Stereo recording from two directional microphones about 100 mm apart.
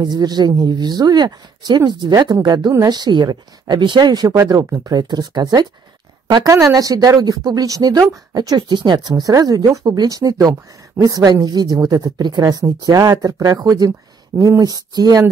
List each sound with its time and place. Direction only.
0.0 s a woman's voice: 45° right (ahead or behind)
6.5 s speech: 30° right (ahead or behind)
8.5 s speech: 50° right (ahead or behind); by 14.6 s 30° right (ahead or behind)
14.6 s speech: 40° right (ahead or behind)